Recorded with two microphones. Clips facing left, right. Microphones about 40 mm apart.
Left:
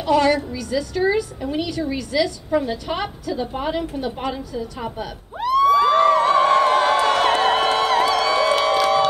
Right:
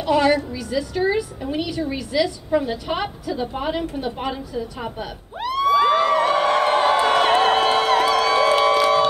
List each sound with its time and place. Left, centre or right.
0.0 s a woman's voice: centre
5.4 s a sound: right
6.8 s music: right